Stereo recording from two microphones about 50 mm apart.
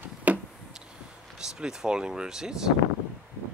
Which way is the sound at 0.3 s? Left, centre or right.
Right.